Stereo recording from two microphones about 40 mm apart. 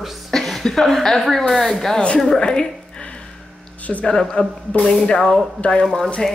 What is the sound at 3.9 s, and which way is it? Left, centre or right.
A woman's voice, left.